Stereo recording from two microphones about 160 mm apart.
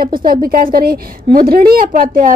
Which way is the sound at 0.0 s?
65° right (ahead or behind).